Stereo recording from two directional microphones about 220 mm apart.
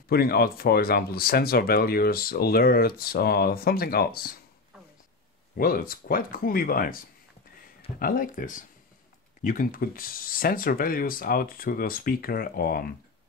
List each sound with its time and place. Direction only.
0.1 s speech: 45° left (ahead or behind)
5.6 s speech: 40° left (ahead or behind)
8.0 s speech: 40° left (ahead or behind)